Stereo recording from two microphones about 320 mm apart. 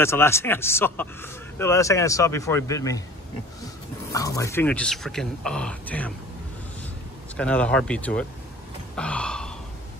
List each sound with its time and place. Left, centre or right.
0.0 s speech: centre
4.1 s speech: centre
7.3 s speech: centre
8.9 s gasp: centre